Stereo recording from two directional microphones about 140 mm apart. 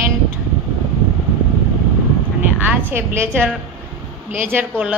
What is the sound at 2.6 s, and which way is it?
A woman's voice, 15° right (ahead or behind).